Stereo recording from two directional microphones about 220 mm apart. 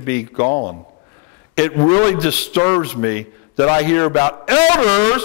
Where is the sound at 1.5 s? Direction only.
20° left (ahead or behind).